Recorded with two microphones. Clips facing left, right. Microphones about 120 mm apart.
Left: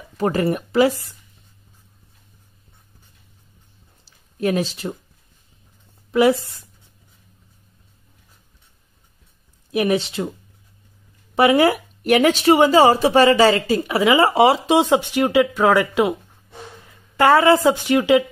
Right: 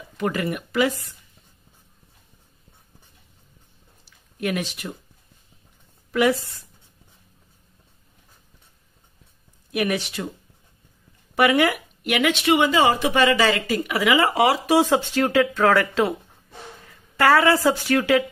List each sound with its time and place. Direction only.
0.2 s speech: 35° left (ahead or behind)
4.0 s a sound: 30° left (ahead or behind)
6.1 s speech: 25° left (ahead or behind)
9.7 s speech: 30° left (ahead or behind)
11.3 s speech: 30° left (ahead or behind); by 16.2 s 15° left (ahead or behind)
17.2 s speech: 25° left (ahead or behind)